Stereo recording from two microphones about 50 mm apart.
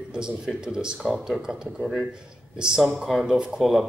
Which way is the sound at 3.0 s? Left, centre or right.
Centre.